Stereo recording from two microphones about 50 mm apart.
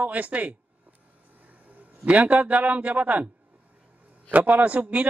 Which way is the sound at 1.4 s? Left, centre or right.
Right.